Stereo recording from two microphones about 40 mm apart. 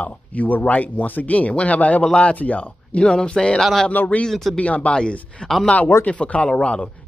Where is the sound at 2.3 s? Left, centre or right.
Left.